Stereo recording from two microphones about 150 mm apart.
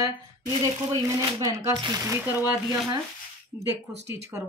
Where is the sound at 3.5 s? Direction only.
20° right (ahead or behind).